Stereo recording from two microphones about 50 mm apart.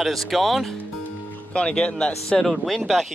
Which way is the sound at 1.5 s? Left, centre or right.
Left.